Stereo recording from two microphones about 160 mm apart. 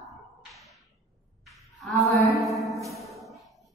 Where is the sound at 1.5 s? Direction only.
Centre (ahead or behind).